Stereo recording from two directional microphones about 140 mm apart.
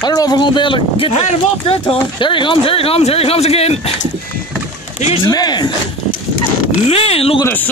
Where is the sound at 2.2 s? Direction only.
35° left (ahead or behind).